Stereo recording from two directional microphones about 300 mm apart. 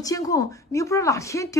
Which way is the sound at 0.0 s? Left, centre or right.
Centre.